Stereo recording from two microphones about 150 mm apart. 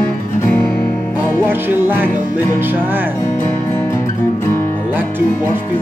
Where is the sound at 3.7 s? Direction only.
15° left (ahead or behind).